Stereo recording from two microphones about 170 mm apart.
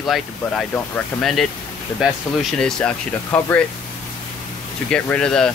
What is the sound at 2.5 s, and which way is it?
Speech, 5° left (ahead or behind).